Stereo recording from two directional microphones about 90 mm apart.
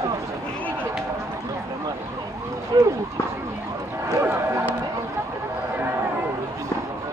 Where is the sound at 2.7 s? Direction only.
45° right (ahead or behind).